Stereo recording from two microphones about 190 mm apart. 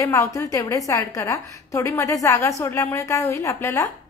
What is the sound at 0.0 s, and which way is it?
A woman's voice, 15° left (ahead or behind).